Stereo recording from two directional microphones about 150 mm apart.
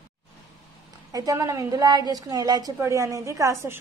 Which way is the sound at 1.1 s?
25° right (ahead or behind).